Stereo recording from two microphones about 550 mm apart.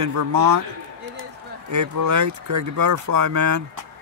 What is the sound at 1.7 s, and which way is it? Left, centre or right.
Speech, right.